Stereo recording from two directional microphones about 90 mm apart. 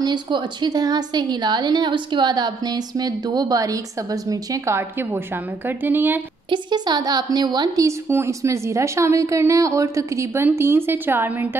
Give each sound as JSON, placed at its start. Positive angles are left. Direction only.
{"t": 0.0, "sound": "a woman's voice", "side_deg": -55}
{"t": 6.5, "sound": "a woman's voice", "side_deg": -55}
{"t": 7.8, "sound": "a woman's voice", "side_deg": -30}